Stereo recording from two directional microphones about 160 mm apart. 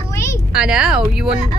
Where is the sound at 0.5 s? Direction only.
5° right (ahead or behind).